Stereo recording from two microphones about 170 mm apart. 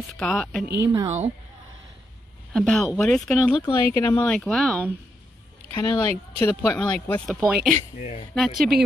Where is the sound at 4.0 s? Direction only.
20° left (ahead or behind).